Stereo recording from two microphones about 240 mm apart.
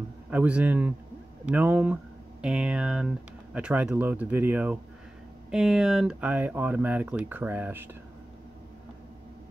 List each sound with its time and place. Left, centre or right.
0.3 s speech: centre